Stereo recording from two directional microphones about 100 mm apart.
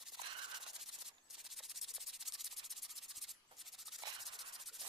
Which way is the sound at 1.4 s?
Centre (ahead or behind).